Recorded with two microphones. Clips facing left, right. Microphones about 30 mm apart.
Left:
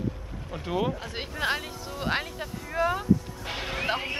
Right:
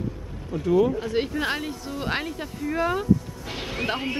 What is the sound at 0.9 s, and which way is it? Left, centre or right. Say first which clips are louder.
Speech: right 9 dB; centre.